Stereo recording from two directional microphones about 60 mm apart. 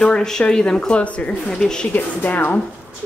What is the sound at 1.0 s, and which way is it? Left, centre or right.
Speech, left.